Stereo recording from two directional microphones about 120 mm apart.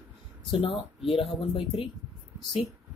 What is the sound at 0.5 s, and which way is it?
Speech, 55° left (ahead or behind).